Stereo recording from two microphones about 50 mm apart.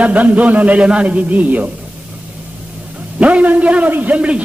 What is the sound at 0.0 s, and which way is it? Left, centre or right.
A man's voice, right.